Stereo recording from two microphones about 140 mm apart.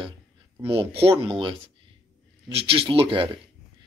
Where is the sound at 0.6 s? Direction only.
40° right (ahead or behind).